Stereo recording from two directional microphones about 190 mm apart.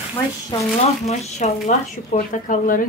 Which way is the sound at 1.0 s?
40° left (ahead or behind).